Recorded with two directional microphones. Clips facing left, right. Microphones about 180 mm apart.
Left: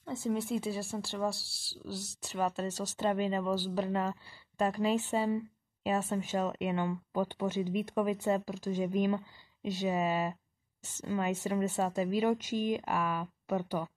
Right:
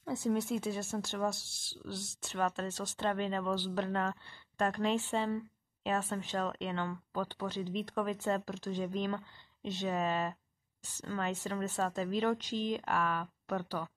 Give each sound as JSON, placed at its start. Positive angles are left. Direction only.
{"t": 0.0, "sound": "speech", "side_deg": 0}
{"t": 1.3, "sound": "speech", "side_deg": 35}
{"t": 2.2, "sound": "speech", "side_deg": 5}
{"t": 2.7, "sound": "speech", "side_deg": 40}
{"t": 3.0, "sound": "speech", "side_deg": 5}